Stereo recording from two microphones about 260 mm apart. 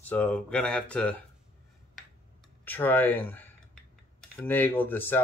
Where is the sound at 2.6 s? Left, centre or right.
Centre.